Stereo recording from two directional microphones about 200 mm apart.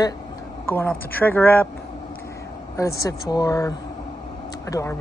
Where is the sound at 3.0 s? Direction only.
20° left (ahead or behind).